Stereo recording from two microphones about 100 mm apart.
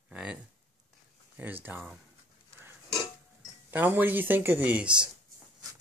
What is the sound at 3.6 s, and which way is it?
Speech, 20° right (ahead or behind).